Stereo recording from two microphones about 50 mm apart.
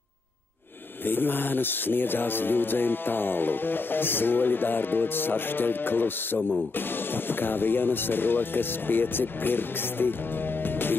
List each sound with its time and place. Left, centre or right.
1.0 s speech: left
10.6 s music: left